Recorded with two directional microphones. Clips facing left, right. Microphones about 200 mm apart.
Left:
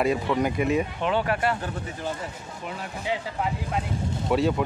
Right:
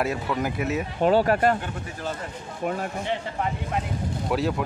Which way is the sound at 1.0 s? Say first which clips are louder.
Right 5 dB; 40° right (ahead or behind).